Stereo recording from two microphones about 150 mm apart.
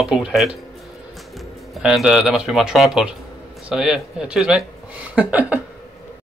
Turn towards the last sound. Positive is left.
turn(degrees=-10)  # may be behind; listen again after turning